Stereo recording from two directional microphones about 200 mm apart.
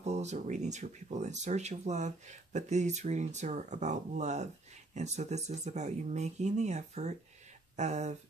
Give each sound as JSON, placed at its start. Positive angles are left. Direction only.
{"t": 0.0, "sound": "speech", "side_deg": -35}